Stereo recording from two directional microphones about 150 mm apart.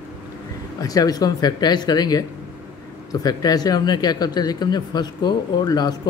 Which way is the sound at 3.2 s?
25° left (ahead or behind).